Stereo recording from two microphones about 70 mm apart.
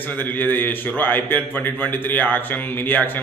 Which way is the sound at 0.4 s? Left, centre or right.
Left.